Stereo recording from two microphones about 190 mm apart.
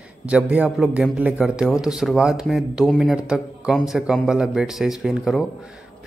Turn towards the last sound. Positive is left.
turn(degrees=0)  # may be behind; listen again after turning